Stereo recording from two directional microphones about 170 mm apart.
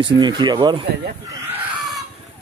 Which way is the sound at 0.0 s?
25° right (ahead or behind).